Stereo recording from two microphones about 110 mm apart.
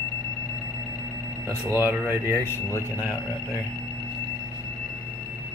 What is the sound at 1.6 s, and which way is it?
Speech, 20° right (ahead or behind).